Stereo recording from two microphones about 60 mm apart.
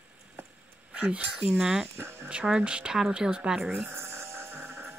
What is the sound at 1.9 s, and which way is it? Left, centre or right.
Speech, right.